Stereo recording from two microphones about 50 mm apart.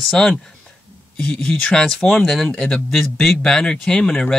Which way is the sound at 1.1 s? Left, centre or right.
Left.